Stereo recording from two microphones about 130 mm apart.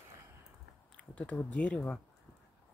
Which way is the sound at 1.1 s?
10° left (ahead or behind).